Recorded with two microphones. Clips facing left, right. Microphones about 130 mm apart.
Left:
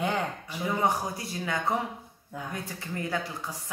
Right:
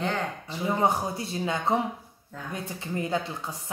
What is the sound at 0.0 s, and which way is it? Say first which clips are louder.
Speech: even; 10° left (ahead or behind).